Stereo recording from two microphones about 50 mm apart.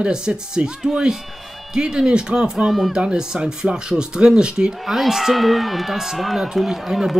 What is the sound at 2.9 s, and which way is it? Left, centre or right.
Speech, centre.